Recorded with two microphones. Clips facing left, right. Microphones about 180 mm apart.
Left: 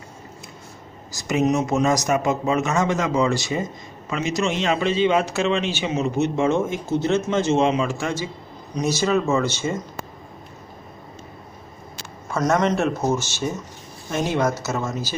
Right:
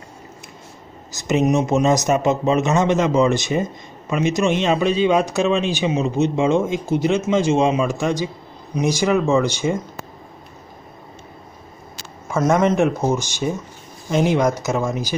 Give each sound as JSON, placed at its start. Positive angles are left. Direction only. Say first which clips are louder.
{"t": 1.1, "sound": "a man's voice", "louder": "right 3 dB", "side_deg": -20}
{"t": 12.3, "sound": "speech", "louder": "right 3 dB", "side_deg": -10}